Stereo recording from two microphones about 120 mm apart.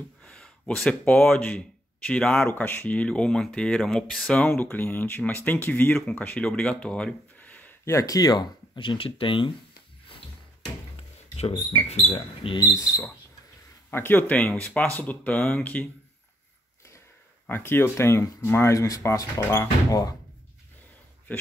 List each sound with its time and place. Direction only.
0.2 s speech: 5° left (ahead or behind); by 9.5 s 45° left (ahead or behind)
11.0 s a sound: 55° left (ahead or behind)
11.9 s speech: 55° left (ahead or behind)
12.5 s speech: 30° left (ahead or behind); by 15.9 s 10° left (ahead or behind)
17.5 s speech: 15° left (ahead or behind)
21.3 s speech: 10° left (ahead or behind)